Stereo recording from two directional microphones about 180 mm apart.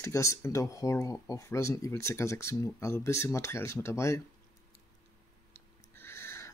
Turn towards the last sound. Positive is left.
turn(degrees=15)  # may be behind; listen again after turning